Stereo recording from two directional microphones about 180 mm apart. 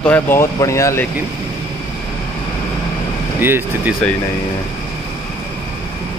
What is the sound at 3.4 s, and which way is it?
Speech, 10° right (ahead or behind).